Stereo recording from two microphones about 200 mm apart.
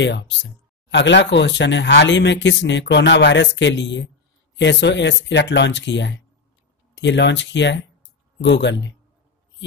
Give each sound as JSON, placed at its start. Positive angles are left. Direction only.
{"t": 0.0, "sound": "speech", "side_deg": 65}